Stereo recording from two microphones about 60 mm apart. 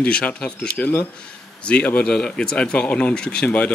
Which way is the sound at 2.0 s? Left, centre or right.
Centre.